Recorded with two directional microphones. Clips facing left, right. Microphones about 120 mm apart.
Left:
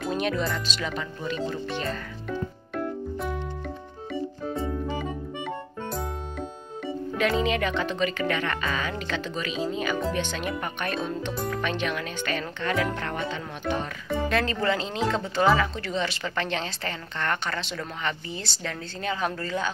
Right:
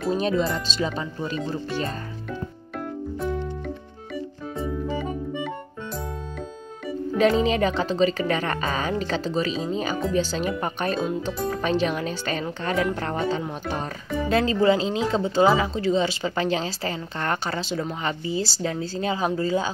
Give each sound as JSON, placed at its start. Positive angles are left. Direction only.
{"t": 0.2, "sound": "speech", "side_deg": -30}
{"t": 3.2, "sound": "music", "side_deg": 0}
{"t": 7.2, "sound": "speech", "side_deg": -35}